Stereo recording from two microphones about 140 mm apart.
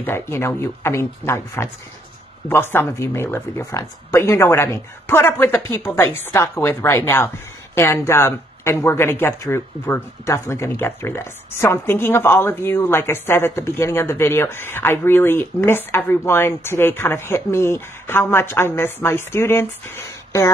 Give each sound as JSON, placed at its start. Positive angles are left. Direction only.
{"t": 0.0, "sound": "speech", "side_deg": 15}